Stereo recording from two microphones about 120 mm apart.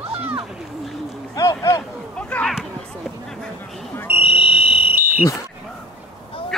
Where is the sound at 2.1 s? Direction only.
10° left (ahead or behind).